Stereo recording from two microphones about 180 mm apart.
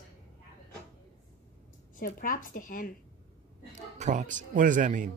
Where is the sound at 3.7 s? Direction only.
40° right (ahead or behind).